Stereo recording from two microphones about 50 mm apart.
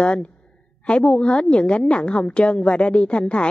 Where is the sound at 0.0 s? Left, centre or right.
Left.